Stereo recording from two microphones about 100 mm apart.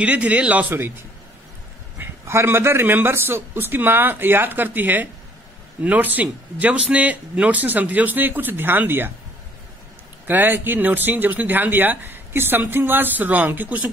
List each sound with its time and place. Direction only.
0.0 s speech: 15° right (ahead or behind)
2.0 s speech: 25° right (ahead or behind)
10.2 s speech: 20° right (ahead or behind)